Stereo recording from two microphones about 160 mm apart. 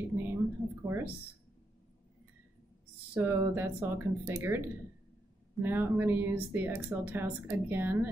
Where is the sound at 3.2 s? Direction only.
15° right (ahead or behind).